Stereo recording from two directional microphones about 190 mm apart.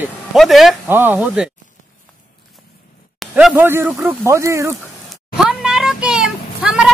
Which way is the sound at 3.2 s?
5° right (ahead or behind).